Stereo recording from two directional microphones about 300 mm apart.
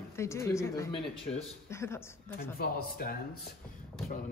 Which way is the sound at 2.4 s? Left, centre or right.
Left.